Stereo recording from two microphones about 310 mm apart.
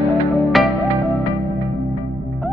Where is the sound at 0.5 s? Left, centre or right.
Centre.